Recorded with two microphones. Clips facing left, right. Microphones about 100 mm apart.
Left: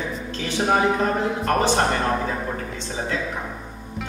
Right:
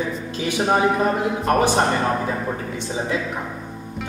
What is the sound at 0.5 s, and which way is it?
Speech, 10° right (ahead or behind).